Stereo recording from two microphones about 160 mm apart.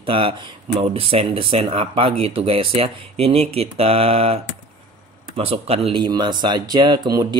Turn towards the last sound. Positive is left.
turn(degrees=-25)  # may be behind; listen again after turning